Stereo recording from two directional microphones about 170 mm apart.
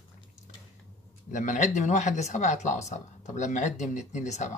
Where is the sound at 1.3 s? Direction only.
45° left (ahead or behind).